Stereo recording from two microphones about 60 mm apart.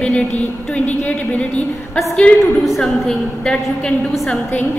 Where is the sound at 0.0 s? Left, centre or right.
Centre.